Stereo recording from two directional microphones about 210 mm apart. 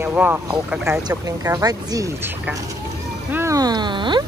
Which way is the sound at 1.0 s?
15° right (ahead or behind).